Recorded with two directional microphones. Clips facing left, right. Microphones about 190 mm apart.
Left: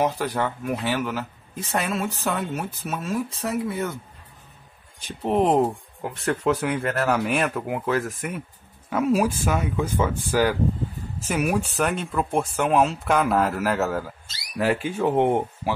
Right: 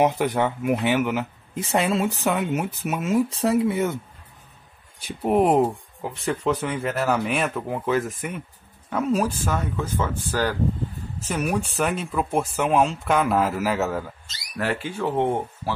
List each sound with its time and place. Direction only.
0.0 s speech: 20° right (ahead or behind)
3.3 s speech: 30° right (ahead or behind)
5.0 s speech: 10° right (ahead or behind)
14.6 s speech: 15° left (ahead or behind)